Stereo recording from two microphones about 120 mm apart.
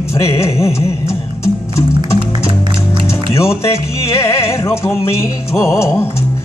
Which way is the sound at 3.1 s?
25° left (ahead or behind).